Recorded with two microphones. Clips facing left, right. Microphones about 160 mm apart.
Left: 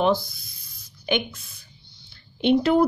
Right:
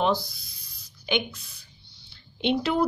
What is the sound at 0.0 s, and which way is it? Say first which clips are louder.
Spray: left 3 dB; 50° left (ahead or behind).